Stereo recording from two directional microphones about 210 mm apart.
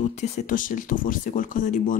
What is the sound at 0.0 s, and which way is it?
Speech, 35° left (ahead or behind).